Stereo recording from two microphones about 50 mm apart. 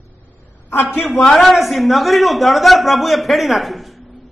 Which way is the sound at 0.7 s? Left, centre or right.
Left.